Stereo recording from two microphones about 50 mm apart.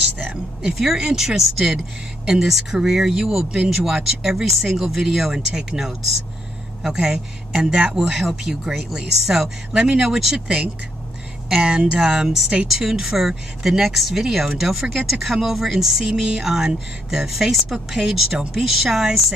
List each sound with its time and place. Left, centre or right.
0.6 s a man's voice: centre
10.3 s speech: right; by 19.0 s centre